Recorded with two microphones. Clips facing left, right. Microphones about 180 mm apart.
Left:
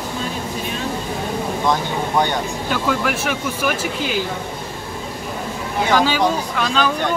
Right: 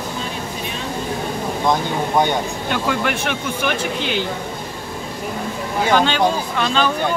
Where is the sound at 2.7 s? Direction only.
Centre (ahead or behind).